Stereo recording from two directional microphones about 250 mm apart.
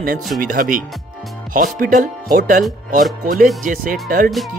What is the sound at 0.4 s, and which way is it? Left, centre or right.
Music, right.